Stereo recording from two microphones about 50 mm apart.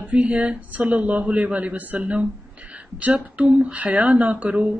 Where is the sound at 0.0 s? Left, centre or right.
Right.